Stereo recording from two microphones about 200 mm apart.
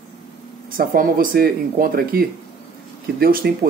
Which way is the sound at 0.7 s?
45° right (ahead or behind).